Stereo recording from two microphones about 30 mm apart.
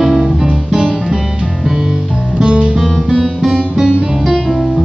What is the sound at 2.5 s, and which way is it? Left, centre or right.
Music, right.